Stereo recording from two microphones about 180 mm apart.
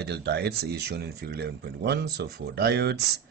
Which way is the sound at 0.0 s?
65° right (ahead or behind).